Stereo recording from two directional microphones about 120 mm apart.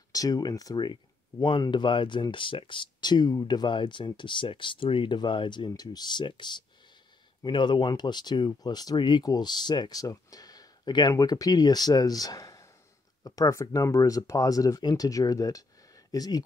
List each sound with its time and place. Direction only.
0.1 s speech: 30° left (ahead or behind)